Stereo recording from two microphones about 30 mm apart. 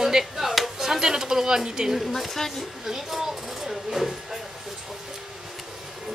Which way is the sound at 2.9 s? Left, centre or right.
Centre.